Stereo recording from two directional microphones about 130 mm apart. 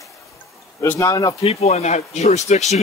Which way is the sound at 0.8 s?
25° left (ahead or behind).